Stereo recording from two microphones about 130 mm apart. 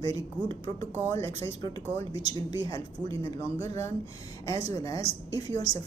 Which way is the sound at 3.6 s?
55° right (ahead or behind).